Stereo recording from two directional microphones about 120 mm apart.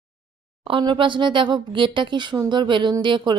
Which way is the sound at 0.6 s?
45° right (ahead or behind).